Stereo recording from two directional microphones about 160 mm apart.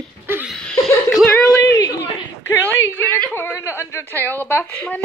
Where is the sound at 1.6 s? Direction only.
20° left (ahead or behind).